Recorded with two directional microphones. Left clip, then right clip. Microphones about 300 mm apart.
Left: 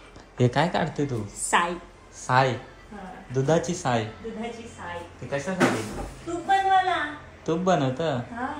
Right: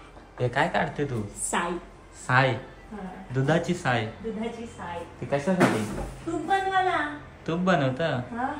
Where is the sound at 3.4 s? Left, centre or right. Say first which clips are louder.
Left 1 dB; centre.